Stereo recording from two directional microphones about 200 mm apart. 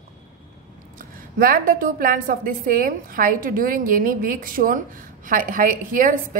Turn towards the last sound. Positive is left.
turn(degrees=-40)  # may be behind; listen again after turning